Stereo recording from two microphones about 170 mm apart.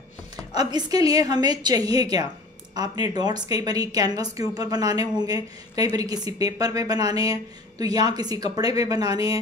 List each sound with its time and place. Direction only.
0.6 s a woman's voice: 25° right (ahead or behind)